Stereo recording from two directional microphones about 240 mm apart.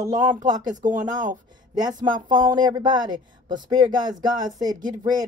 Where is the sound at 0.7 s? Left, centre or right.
Right.